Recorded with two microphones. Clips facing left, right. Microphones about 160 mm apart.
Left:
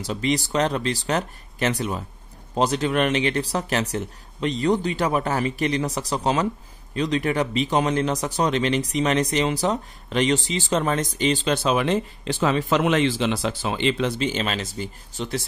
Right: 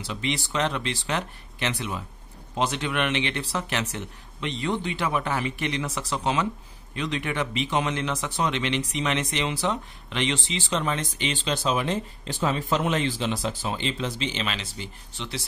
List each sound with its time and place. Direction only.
0.0 s a man's voice: 40° left (ahead or behind)
11.5 s speech: 70° left (ahead or behind); by 15.4 s 45° left (ahead or behind)